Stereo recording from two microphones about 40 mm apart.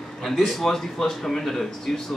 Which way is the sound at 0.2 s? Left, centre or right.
Centre.